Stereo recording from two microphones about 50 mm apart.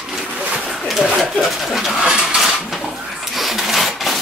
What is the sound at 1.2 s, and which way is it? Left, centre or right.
Speech, centre.